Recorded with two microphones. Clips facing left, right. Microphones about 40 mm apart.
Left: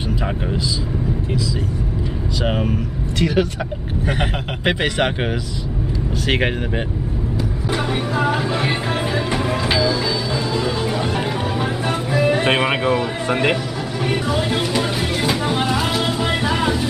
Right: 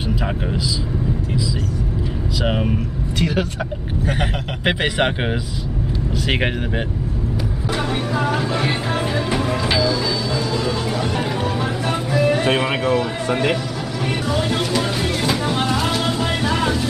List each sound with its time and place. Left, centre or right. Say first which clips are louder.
2.4 s speech: even; centre
4.6 s speech: even; centre
7.7 s music: left 1 dB; centre
12.5 s a sound: left 1 dB; centre
14.0 s music: left 1 dB; centre